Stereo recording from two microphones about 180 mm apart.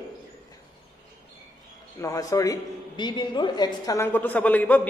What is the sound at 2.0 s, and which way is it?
A woman's voice, 20° left (ahead or behind).